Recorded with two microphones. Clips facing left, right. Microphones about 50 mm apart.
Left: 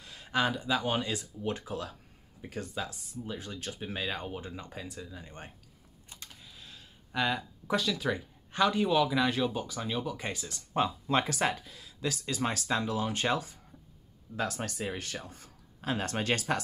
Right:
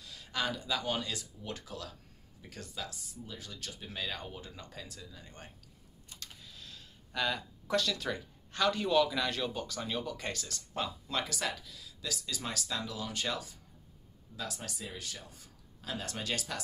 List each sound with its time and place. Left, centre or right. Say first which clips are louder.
0.0 s speech: left 6 dB; left
10.7 s speech: left 8 dB; left